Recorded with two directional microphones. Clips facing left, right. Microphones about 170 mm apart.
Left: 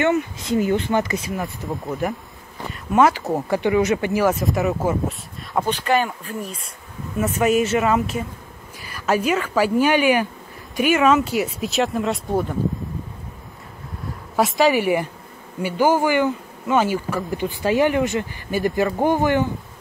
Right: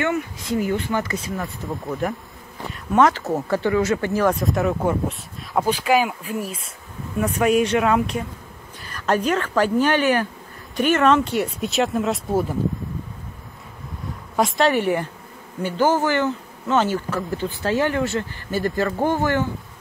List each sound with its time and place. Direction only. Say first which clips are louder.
0.0 s speech: left 4 dB; 20° left (ahead or behind)
1.7 s speech: even; centre (ahead or behind)
14.3 s speech: left 1 dB; 5° left (ahead or behind)